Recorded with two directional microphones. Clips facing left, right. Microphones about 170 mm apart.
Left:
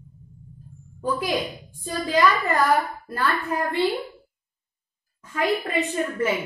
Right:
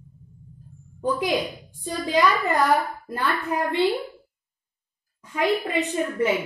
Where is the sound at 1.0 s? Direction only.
20° right (ahead or behind).